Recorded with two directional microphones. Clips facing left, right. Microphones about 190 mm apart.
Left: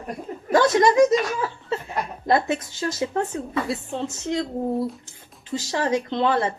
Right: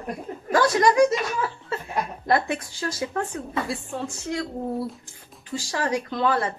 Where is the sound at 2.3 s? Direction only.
20° left (ahead or behind).